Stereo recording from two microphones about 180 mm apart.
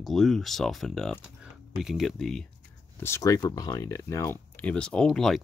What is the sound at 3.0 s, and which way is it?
Speech, 15° left (ahead or behind).